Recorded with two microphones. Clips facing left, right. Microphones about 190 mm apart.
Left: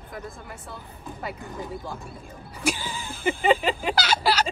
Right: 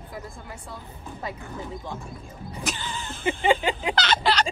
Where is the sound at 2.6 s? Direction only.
10° left (ahead or behind).